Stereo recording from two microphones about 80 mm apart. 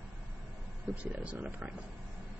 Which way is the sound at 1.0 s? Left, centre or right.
Centre.